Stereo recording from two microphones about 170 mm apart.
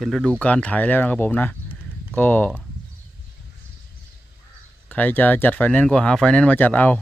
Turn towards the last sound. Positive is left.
turn(degrees=10)  # may be behind; listen again after turning